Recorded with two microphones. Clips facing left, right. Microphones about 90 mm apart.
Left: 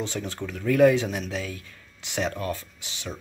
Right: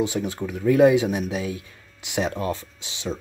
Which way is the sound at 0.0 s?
15° right (ahead or behind).